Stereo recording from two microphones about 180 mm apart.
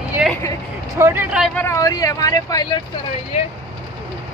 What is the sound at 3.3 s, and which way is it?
Speech, 35° left (ahead or behind).